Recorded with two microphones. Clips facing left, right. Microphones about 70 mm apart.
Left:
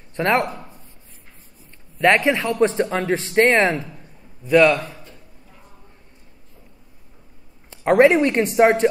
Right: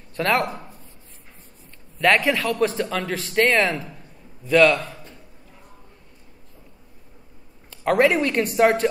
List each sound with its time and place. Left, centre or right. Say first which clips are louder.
0.1 s speech: left 2 dB; left
2.0 s speech: left 2 dB; left
4.5 s a man's voice: left 2 dB; centre
7.7 s speech: left 4 dB; left